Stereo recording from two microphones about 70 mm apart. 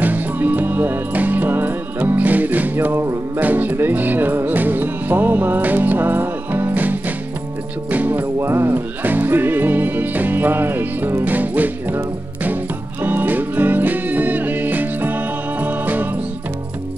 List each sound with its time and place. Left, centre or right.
0.0 s music: right
3.3 s music: right
13.0 s music: right